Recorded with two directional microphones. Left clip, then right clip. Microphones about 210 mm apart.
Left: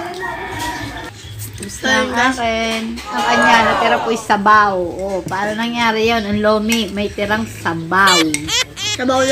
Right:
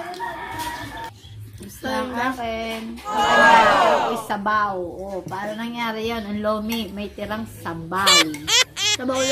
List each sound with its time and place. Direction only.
2.0 s speech: 10° left (ahead or behind)
3.1 s speech: centre (ahead or behind)
4.3 s speech: 20° left (ahead or behind)
8.0 s speech: centre (ahead or behind)